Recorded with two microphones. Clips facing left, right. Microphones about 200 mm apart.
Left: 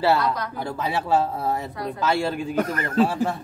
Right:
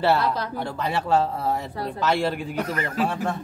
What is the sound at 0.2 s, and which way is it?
Speech, 30° right (ahead or behind).